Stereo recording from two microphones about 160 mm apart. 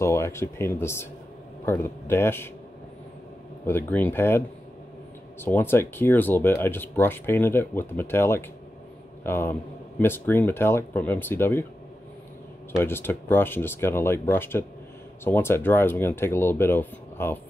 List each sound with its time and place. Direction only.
0.0 s speech: 15° left (ahead or behind)
3.6 s speech: 10° left (ahead or behind)
5.4 s speech: 15° left (ahead or behind)
12.7 s speech: 15° left (ahead or behind)